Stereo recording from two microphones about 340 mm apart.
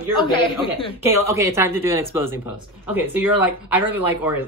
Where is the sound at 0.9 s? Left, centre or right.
Centre.